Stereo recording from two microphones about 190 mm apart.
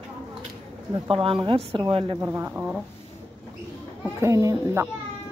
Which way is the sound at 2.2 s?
15° right (ahead or behind).